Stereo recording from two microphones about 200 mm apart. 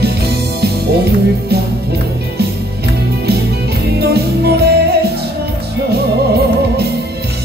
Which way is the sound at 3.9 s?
55° right (ahead or behind).